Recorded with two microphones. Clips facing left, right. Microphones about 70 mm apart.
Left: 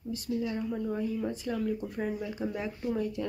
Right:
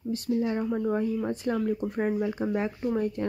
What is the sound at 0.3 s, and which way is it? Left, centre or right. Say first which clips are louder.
Speech: right 5 dB; right.